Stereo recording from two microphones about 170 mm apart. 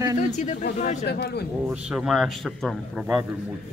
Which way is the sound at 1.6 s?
5° right (ahead or behind).